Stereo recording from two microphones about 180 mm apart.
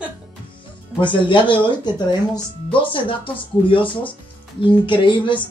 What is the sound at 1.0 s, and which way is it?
Speech, 25° left (ahead or behind).